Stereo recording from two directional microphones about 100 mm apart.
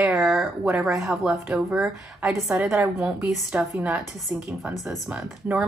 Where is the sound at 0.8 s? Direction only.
5° right (ahead or behind).